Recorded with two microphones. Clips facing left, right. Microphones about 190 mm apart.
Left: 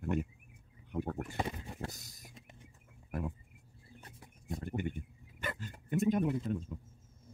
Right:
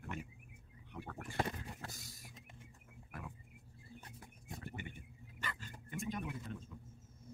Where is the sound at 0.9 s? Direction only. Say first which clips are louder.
Left 11 dB; 45° left (ahead or behind).